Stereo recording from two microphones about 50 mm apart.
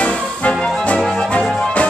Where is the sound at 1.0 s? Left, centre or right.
Centre.